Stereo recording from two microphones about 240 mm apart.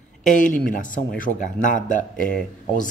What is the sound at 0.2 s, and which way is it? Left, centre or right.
Speech, left.